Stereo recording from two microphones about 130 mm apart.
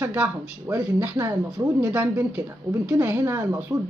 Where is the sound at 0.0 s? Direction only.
20° right (ahead or behind).